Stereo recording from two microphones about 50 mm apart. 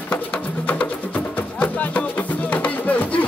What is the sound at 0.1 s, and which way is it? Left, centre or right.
Music, left.